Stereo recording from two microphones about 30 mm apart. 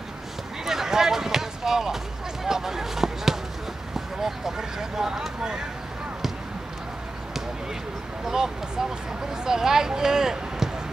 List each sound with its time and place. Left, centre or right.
0.7 s basketball bounce: centre
3.9 s speech: centre
8.3 s speech: centre